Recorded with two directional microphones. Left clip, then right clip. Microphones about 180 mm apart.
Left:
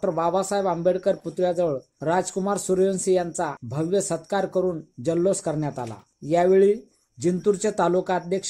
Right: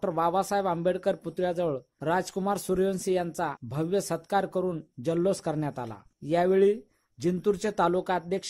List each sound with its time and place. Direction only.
0.0 s speech: 20° right (ahead or behind)